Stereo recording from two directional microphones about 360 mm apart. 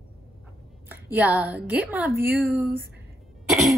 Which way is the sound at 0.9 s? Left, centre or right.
Centre.